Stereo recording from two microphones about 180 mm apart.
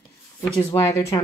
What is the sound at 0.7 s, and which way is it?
Speech, 15° left (ahead or behind).